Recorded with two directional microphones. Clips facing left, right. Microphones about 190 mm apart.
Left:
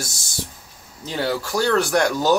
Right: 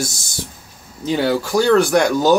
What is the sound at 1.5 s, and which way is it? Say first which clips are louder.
Speech: right 6 dB; 15° right (ahead or behind).